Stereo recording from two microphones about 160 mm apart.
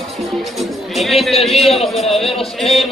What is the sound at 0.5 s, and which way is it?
Music, centre (ahead or behind).